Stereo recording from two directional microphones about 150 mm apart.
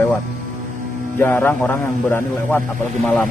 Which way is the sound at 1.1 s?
15° left (ahead or behind).